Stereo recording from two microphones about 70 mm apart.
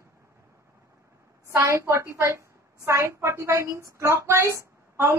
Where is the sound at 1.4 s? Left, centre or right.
Right.